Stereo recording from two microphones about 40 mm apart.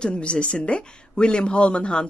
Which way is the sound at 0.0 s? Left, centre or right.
Left.